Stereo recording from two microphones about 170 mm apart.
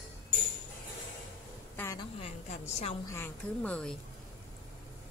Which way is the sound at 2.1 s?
35° left (ahead or behind).